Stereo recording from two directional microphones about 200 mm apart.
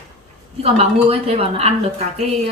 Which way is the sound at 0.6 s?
30° right (ahead or behind).